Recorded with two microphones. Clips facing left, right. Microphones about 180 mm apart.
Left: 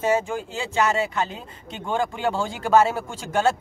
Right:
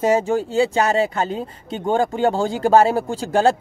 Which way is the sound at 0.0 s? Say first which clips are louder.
Right 5 dB; 40° right (ahead or behind).